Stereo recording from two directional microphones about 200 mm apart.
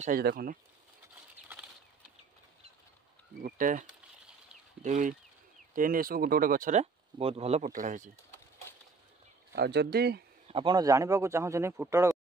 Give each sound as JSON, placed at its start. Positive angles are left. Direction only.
{"t": 0.0, "sound": "speech", "side_deg": -50}
{"t": 3.4, "sound": "speech", "side_deg": -40}
{"t": 4.8, "sound": "speech", "side_deg": -40}
{"t": 9.6, "sound": "speech", "side_deg": -55}
{"t": 10.5, "sound": "speech", "side_deg": -20}